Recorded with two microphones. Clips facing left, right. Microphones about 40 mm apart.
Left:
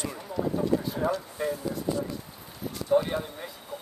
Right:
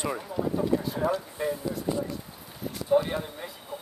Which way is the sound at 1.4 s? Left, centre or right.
Centre.